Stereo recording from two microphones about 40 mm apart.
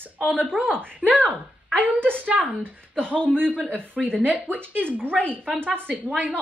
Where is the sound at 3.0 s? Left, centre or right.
Left.